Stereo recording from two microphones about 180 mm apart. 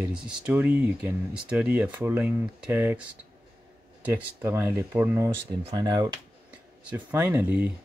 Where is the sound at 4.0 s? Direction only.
10° right (ahead or behind).